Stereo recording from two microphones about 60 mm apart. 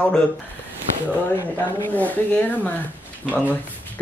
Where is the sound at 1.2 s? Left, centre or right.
Left.